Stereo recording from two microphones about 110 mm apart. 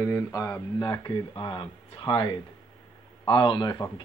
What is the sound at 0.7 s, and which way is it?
Speech, 40° left (ahead or behind).